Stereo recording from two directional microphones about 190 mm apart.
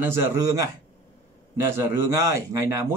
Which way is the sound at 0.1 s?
15° right (ahead or behind).